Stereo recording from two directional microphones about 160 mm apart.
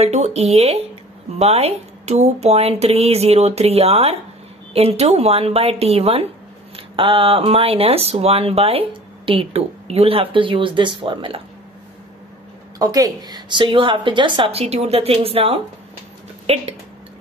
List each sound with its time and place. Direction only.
0.0 s speech: 40° right (ahead or behind)
12.7 s speech: 25° right (ahead or behind); by 16.6 s 40° right (ahead or behind)